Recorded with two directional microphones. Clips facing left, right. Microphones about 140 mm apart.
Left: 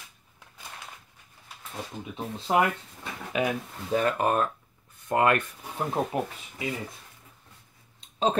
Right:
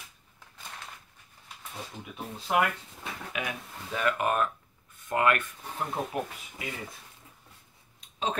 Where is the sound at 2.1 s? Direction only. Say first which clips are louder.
Left 3 dB; 25° left (ahead or behind).